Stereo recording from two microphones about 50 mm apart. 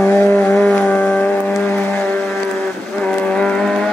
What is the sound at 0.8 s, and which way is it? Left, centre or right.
Vehicle, left.